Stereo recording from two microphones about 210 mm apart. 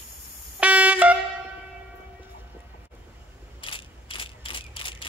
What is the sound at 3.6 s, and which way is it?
Mechanisms, 25° left (ahead or behind).